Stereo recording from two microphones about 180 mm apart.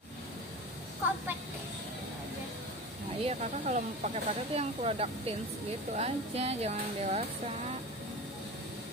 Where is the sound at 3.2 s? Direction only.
40° right (ahead or behind).